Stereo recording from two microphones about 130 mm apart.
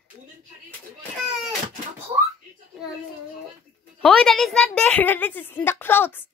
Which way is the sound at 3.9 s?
5° left (ahead or behind).